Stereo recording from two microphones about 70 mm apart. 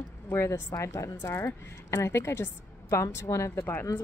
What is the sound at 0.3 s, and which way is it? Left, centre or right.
A woman's voice, left.